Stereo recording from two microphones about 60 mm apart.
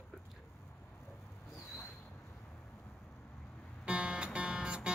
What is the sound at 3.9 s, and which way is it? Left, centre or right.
Music, centre.